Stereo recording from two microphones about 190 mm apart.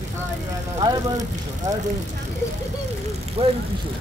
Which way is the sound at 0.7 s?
20° right (ahead or behind).